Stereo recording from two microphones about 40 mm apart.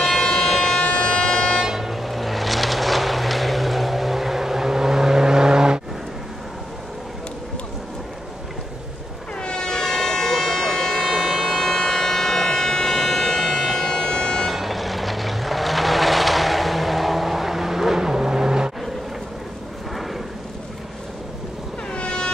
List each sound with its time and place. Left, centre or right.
0.0 s civil defense siren: centre
0.7 s a sound: centre
1.2 s music: centre
1.7 s vehicle: centre
9.4 s a sound: centre
14.4 s vehicle: centre
21.9 s vehicle: left